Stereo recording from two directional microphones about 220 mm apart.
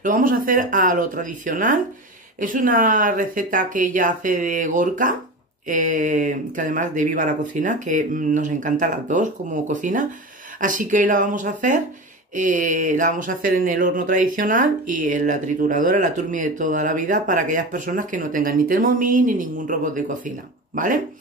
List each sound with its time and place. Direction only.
0.0 s speech: 40° right (ahead or behind)